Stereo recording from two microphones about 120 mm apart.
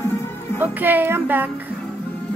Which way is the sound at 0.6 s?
15° right (ahead or behind).